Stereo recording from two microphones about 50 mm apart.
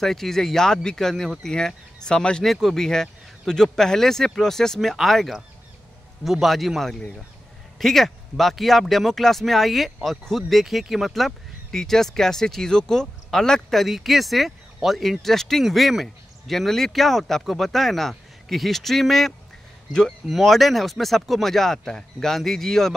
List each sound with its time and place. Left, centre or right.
0.0 s speech: centre
2.4 s speech: centre
19.9 s speech: centre
20.2 s speech: centre